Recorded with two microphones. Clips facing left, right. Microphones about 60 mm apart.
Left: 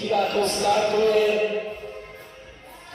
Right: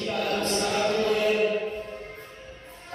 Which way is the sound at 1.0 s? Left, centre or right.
Left.